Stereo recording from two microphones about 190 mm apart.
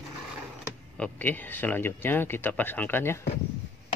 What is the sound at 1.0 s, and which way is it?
Speech, 10° left (ahead or behind).